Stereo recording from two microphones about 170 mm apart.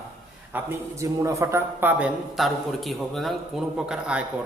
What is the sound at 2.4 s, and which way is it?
A man's voice, centre (ahead or behind).